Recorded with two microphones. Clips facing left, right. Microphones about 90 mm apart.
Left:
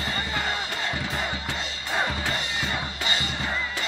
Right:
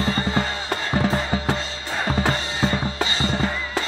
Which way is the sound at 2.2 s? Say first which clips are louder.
Right 7 dB; 35° right (ahead or behind).